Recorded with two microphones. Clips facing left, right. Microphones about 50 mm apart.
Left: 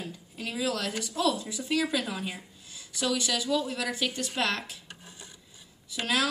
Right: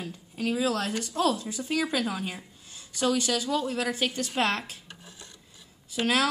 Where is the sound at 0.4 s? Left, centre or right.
Right.